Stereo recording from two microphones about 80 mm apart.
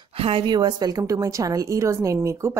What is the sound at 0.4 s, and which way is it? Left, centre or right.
A woman's voice, right.